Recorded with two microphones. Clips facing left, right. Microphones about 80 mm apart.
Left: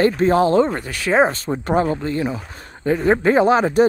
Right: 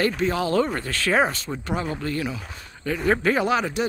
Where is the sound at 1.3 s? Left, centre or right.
Left.